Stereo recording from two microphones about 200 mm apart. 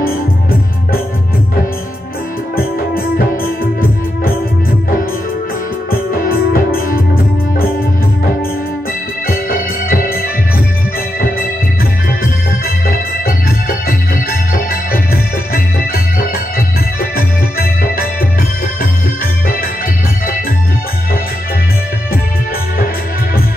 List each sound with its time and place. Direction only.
2.5 s music: 50° left (ahead or behind)
5.9 s music: 45° left (ahead or behind)
9.3 s organ: 50° left (ahead or behind)
11.1 s music: 50° left (ahead or behind)
12.6 s organ: 50° left (ahead or behind)
15.5 s music: 50° left (ahead or behind)